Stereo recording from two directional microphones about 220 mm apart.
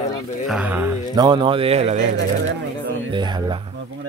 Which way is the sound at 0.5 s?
5° right (ahead or behind).